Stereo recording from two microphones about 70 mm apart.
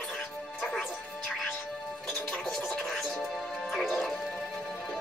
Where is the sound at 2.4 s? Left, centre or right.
Centre.